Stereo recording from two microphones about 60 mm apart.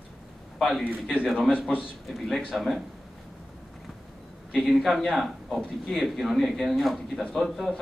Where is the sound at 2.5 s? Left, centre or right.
Centre.